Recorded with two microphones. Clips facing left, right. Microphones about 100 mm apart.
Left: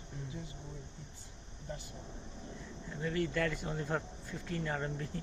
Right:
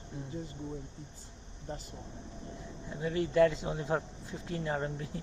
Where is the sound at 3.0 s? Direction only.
25° right (ahead or behind).